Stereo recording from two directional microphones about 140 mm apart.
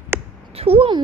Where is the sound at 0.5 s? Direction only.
45° right (ahead or behind).